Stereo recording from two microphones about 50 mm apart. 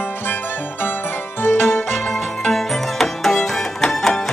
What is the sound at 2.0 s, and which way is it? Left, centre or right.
Music, centre.